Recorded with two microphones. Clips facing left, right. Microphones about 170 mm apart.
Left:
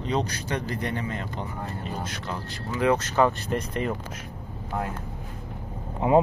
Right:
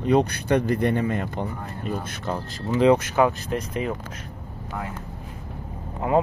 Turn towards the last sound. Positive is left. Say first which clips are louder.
# left 2 dB
turn(degrees=20)  # may be behind; listen again after turning